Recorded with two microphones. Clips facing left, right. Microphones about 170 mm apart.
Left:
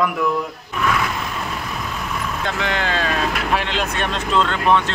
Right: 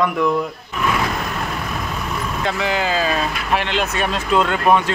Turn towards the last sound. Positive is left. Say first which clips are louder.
# right 2 dB
turn(degrees=-10)  # may be behind; listen again after turning